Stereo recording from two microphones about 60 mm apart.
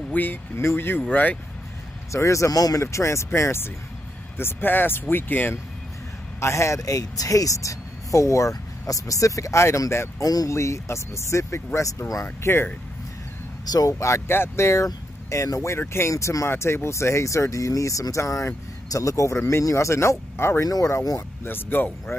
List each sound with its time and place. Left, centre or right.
0.1 s speech: left
0.6 s speech: left
2.1 s speech: left
2.8 s speech: left
6.4 s speech: left
6.8 s speech: left
10.2 s speech: left
10.5 s speech: left
13.7 s speech: left
14.3 s speech: left
15.9 s speech: left